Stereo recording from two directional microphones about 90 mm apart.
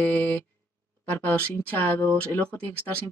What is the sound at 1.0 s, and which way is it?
Speech, 20° left (ahead or behind).